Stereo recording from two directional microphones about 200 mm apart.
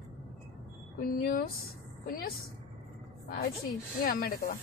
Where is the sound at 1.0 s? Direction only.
45° left (ahead or behind).